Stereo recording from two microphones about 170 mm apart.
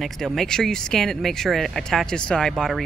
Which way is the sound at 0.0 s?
Centre (ahead or behind).